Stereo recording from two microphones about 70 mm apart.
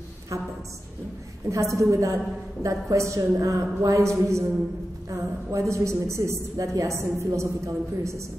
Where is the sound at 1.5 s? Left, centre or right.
Right.